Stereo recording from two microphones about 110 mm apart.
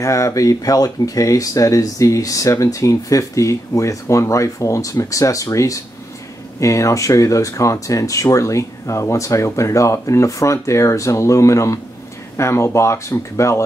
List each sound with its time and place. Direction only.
0.0 s speech: 30° left (ahead or behind)